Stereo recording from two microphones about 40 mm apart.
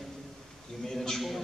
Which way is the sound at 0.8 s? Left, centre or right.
Centre.